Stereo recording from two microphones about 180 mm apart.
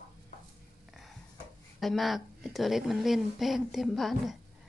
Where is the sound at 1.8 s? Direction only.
Centre (ahead or behind).